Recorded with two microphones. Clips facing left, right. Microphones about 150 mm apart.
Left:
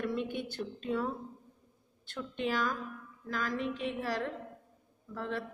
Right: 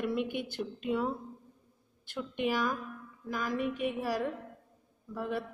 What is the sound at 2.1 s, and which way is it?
A woman's voice, 10° right (ahead or behind).